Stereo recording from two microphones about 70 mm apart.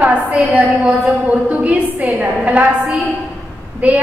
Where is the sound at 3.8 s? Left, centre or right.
Centre.